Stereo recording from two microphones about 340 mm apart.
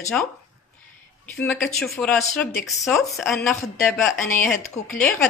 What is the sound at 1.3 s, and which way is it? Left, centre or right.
Speech, centre.